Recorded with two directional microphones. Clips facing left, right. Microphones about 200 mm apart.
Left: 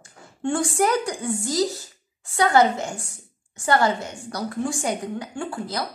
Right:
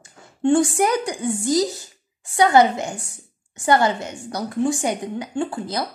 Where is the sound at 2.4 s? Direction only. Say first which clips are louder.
Right 3 dB; 20° right (ahead or behind).